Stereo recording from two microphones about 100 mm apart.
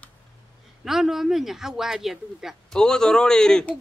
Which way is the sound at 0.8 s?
5° right (ahead or behind).